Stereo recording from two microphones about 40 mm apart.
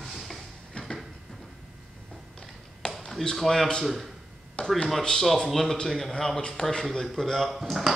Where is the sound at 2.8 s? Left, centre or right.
Left.